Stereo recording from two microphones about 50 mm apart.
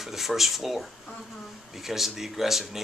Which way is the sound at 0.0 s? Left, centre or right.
Centre.